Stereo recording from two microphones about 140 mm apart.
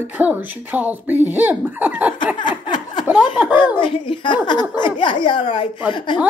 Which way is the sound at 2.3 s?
35° left (ahead or behind).